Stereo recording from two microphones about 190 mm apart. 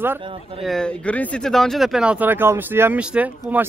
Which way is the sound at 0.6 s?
Centre (ahead or behind).